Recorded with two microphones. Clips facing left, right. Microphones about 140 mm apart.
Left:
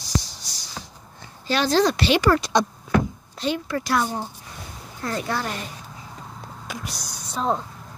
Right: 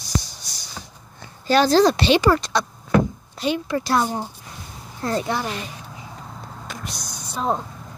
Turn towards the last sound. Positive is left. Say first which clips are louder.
# even
turn(degrees=0)  # may be behind; listen again after turning